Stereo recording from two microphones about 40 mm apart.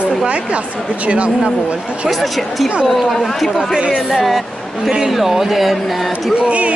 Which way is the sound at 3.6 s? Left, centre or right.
Right.